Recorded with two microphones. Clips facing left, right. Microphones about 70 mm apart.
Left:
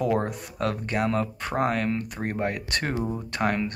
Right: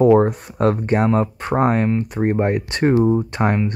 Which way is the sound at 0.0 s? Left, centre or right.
Right.